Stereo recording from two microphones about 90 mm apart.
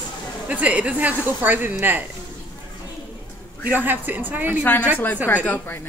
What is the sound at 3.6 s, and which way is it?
A woman's voice, 20° right (ahead or behind).